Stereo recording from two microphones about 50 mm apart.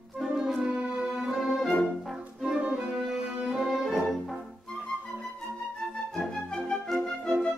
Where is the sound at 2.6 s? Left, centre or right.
Right.